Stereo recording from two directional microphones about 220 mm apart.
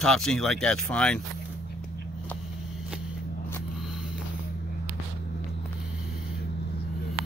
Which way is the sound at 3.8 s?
5° right (ahead or behind).